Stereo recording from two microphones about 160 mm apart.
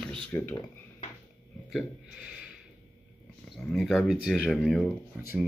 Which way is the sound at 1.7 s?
Centre (ahead or behind).